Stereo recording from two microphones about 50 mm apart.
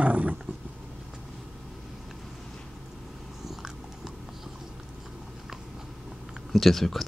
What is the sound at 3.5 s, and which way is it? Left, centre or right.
Biting, centre.